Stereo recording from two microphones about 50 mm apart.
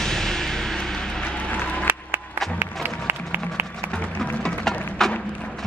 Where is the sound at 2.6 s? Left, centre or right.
Right.